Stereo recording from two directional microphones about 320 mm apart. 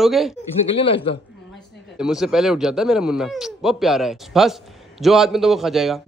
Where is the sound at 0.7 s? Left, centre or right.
Centre.